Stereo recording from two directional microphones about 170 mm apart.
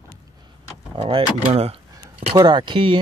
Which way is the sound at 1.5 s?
35° right (ahead or behind).